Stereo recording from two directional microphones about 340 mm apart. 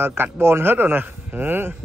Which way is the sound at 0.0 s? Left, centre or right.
Centre.